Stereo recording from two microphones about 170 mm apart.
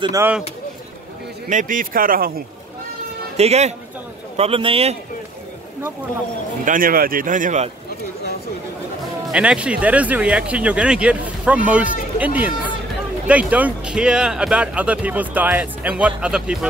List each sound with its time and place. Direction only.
1.5 s a man's voice: 50° right (ahead or behind)
3.3 s a man's voice: 40° right (ahead or behind)
6.6 s speech: 55° right (ahead or behind)
9.3 s speech: 5° right (ahead or behind)